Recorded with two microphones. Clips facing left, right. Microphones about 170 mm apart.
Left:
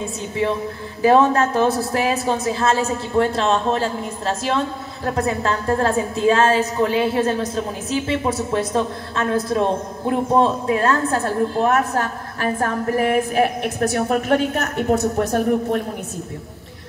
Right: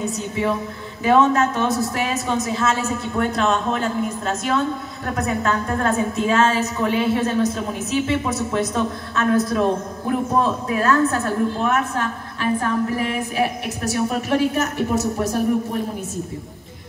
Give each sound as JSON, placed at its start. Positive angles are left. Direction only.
{"t": 1.0, "sound": "a woman's voice", "side_deg": 35}